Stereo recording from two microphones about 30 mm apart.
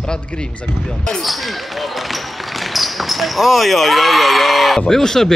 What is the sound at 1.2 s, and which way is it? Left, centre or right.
Basketball bounce, centre.